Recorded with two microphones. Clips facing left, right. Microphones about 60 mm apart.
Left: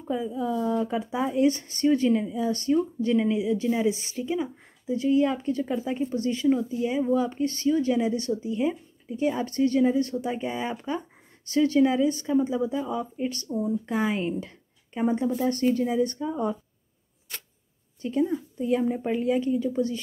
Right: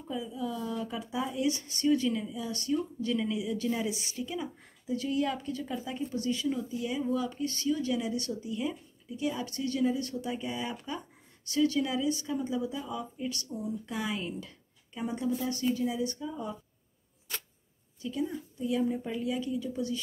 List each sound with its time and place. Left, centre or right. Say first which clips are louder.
0.1 s speech: left 8 dB; left
15.3 s speech: left 7 dB; left
18.0 s speech: left 8 dB; left